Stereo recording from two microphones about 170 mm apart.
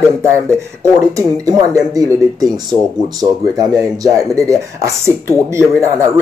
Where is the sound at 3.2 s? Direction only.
20° right (ahead or behind).